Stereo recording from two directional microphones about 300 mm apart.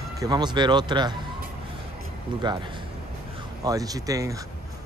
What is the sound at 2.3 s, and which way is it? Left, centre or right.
Speech, centre.